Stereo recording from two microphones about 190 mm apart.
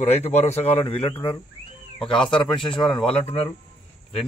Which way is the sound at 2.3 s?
25° left (ahead or behind).